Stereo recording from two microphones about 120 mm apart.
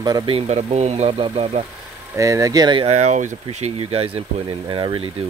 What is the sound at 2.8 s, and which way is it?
Speech, 65° right (ahead or behind).